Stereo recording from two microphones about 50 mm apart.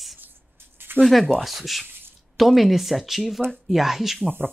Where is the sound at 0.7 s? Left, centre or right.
Right.